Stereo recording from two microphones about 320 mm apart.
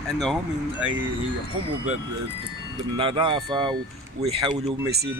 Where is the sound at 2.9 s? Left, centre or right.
Centre.